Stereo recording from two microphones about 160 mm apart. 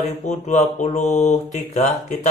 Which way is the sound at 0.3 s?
50° left (ahead or behind).